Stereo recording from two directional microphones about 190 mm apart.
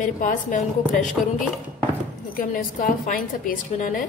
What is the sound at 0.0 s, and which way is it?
A woman's voice, 45° left (ahead or behind).